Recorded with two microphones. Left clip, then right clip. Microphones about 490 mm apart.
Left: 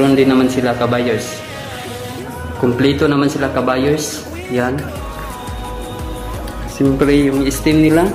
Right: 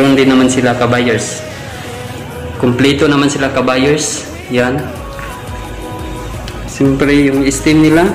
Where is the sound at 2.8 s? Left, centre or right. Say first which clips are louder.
Right 4 dB; left.